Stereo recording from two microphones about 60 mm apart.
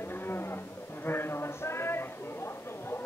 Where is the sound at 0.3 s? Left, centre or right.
Left.